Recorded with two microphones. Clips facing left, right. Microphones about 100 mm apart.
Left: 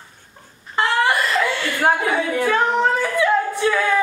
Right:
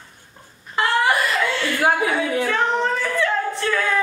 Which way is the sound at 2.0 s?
10° left (ahead or behind).